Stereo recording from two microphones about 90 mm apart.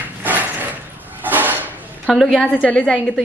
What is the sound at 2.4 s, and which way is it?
Speech, 15° left (ahead or behind).